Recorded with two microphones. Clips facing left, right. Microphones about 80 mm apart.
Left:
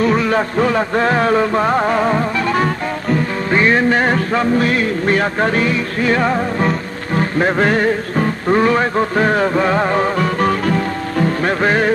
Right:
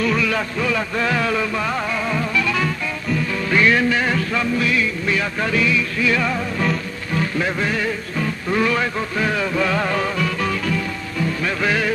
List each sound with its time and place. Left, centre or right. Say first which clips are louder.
0.0 s music: left 5 dB; left